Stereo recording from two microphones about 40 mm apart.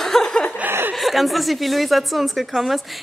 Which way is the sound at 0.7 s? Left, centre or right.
Right.